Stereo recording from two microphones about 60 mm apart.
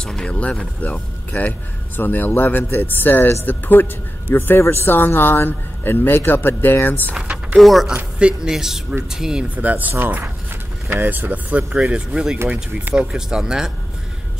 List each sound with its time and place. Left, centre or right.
0.0 s speech: centre
2.0 s a man's voice: left
7.5 s speech: centre
8.2 s speech: centre
9.6 s speech: right
11.9 s speech: centre